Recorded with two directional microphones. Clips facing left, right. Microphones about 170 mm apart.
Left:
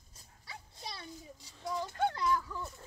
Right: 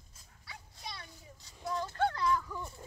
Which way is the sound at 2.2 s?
5° left (ahead or behind).